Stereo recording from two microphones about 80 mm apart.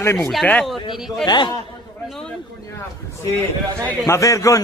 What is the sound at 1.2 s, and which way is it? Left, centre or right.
Speech, left.